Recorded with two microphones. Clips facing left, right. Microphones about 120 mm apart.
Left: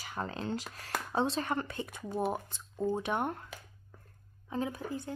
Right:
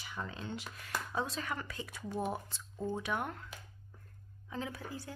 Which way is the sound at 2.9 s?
25° left (ahead or behind).